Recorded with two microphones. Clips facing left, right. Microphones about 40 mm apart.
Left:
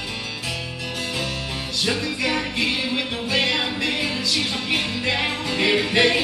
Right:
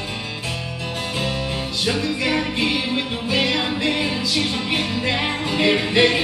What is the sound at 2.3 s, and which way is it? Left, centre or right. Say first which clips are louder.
Music: right 1 dB; centre.